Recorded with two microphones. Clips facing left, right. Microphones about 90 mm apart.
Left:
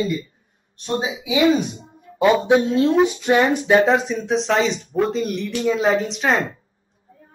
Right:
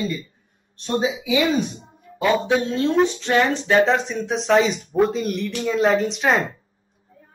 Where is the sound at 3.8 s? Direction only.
Centre (ahead or behind).